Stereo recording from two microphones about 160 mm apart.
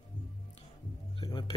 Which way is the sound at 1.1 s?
30° left (ahead or behind).